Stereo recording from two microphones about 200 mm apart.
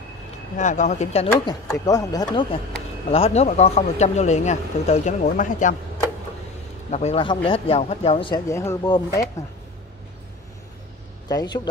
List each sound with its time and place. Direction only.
0.6 s speech: 35° left (ahead or behind)
1.4 s speech: 20° left (ahead or behind); by 5.8 s 40° left (ahead or behind)
6.9 s speech: 30° left (ahead or behind)
8.5 s speech: 15° left (ahead or behind)
11.2 s speech: 20° left (ahead or behind)